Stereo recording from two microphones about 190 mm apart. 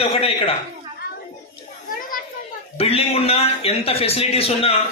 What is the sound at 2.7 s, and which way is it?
A man's voice, 30° left (ahead or behind).